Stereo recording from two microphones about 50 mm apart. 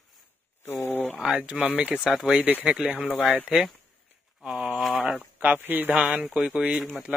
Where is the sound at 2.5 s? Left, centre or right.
Right.